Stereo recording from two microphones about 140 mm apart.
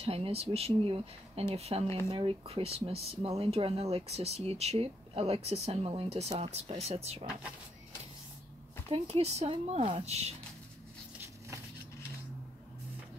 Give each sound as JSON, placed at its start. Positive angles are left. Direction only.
{"t": 0.0, "sound": "speech", "side_deg": -45}
{"t": 8.9, "sound": "speech", "side_deg": -45}